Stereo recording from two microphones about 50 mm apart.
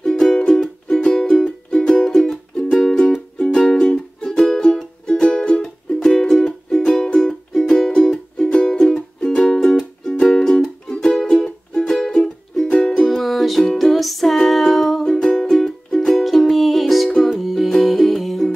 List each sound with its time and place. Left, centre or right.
0.0 s music: centre
7.2 s music: centre
13.0 s music: centre